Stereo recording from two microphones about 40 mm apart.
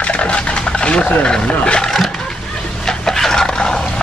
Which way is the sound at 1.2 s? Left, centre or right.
Left.